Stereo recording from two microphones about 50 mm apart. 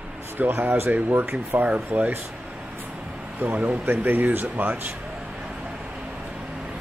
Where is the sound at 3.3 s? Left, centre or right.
Right.